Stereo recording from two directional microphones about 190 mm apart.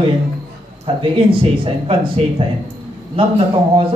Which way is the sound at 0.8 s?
30° right (ahead or behind).